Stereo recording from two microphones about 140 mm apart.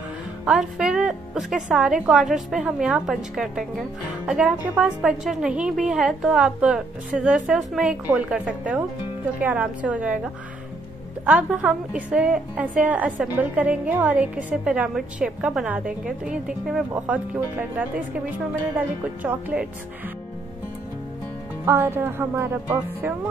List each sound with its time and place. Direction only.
0.5 s a woman's voice: 5° right (ahead or behind)
21.6 s a woman's voice: 15° right (ahead or behind)